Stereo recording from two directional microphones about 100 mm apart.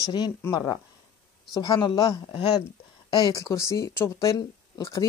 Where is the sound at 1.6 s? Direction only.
45° left (ahead or behind).